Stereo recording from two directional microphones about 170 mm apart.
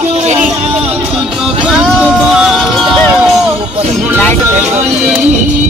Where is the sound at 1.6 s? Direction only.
5° right (ahead or behind).